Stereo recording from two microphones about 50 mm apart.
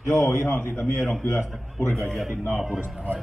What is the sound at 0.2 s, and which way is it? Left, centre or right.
Speech, left.